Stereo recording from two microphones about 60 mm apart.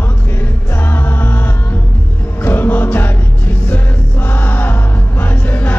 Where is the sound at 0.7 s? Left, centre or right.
Left.